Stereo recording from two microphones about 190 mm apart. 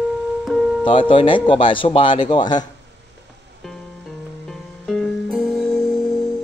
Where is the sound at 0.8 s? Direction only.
25° left (ahead or behind).